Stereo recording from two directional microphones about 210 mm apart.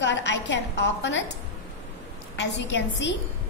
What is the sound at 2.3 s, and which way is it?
Speech, 55° left (ahead or behind).